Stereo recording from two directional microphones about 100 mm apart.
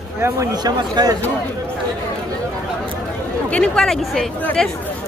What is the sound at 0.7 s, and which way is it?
Speech, 45° right (ahead or behind).